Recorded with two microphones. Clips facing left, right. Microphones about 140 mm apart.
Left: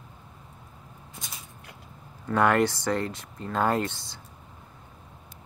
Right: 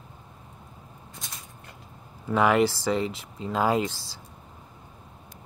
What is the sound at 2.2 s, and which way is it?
Speech, 5° right (ahead or behind).